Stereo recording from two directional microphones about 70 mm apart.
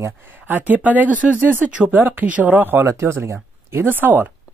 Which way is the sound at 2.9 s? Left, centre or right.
Right.